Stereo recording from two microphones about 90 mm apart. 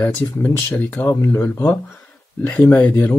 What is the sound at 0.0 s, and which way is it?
Speech, 25° left (ahead or behind).